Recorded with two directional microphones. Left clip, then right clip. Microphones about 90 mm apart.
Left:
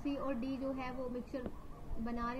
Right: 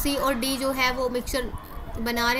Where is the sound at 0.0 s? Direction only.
15° right (ahead or behind).